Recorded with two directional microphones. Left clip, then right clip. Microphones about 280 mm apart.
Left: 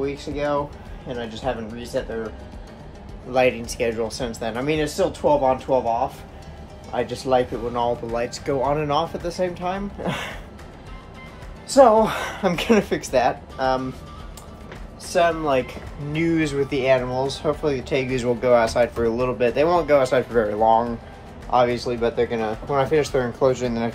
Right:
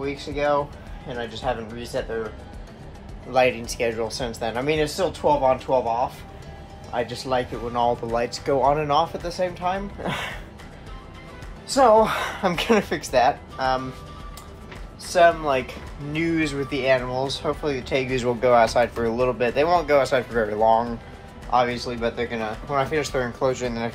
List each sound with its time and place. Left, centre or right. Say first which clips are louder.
0.0 s speech: even; centre
3.3 s speech: even; centre
11.7 s speech: left 2 dB; centre
15.1 s speech: right 1 dB; centre